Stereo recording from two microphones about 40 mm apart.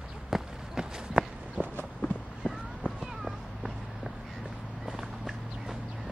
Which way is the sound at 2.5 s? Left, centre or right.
Centre.